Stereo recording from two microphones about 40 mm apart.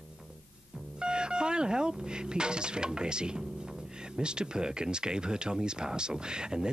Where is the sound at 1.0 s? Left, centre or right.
Right.